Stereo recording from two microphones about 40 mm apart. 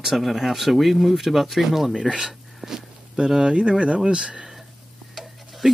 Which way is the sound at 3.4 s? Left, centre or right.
Right.